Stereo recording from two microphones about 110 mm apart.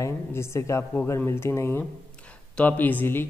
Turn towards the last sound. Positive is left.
turn(degrees=20)  # may be behind; listen again after turning